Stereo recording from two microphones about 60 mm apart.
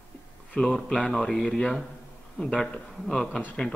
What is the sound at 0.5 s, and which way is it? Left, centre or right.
A man's voice, centre.